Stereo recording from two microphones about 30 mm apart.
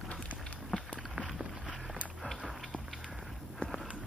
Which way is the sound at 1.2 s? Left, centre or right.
Right.